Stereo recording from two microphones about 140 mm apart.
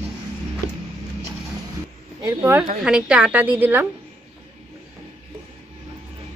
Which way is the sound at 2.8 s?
5° right (ahead or behind).